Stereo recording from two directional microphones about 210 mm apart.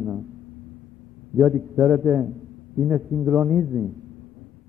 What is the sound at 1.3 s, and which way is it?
A man's voice, 5° right (ahead or behind).